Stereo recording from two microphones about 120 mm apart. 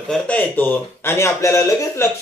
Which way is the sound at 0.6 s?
20° left (ahead or behind).